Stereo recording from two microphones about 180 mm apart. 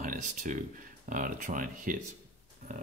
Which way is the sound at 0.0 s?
45° right (ahead or behind).